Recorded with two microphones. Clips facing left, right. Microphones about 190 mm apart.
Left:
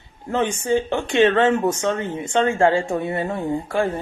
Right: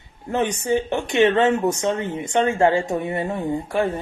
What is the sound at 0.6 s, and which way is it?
A woman's voice, 20° right (ahead or behind).